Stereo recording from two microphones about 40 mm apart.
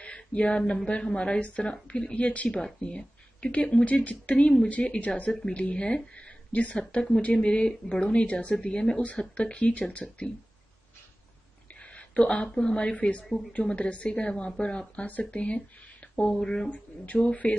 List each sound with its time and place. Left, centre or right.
0.0 s a sound: left
0.8 s a woman's voice: left
6.1 s a sound: left
6.8 s a woman's voice: left
11.8 s a woman's voice: left
16.3 s speech: centre
16.7 s speech: left